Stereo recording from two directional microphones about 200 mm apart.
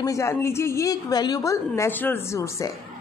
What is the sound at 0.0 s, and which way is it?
A woman's voice, 15° left (ahead or behind).